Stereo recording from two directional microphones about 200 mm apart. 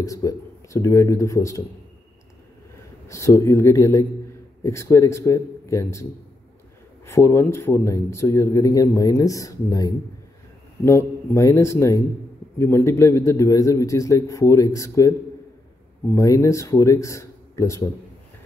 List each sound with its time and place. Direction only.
0.0 s a man's voice: 15° left (ahead or behind)
3.1 s a man's voice: 15° left (ahead or behind)
7.1 s a man's voice: 15° left (ahead or behind)